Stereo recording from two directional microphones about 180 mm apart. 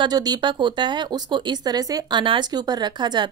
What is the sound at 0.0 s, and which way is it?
A woman's voice, 20° right (ahead or behind).